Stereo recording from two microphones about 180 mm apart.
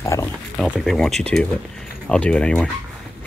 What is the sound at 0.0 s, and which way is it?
Pig, 15° left (ahead or behind).